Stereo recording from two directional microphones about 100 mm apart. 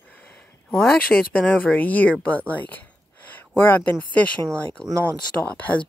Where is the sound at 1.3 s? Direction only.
15° left (ahead or behind).